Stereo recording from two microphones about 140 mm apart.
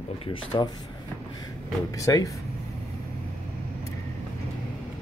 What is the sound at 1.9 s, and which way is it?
Speech, 25° left (ahead or behind).